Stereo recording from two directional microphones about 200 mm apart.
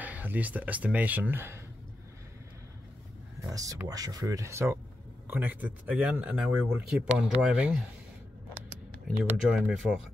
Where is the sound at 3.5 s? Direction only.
15° right (ahead or behind).